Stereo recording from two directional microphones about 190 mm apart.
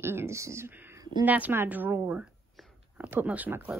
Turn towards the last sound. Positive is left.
turn(degrees=-10)  # may be behind; listen again after turning